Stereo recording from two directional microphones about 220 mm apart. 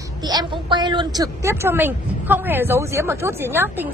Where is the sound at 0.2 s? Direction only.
20° right (ahead or behind).